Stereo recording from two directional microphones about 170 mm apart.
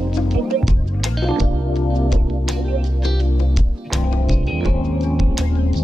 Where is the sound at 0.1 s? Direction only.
Centre (ahead or behind).